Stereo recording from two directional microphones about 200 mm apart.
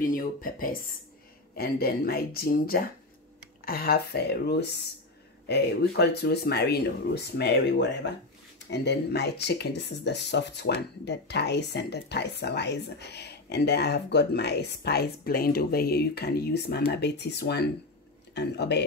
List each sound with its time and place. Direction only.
0.0 s speech: 45° left (ahead or behind)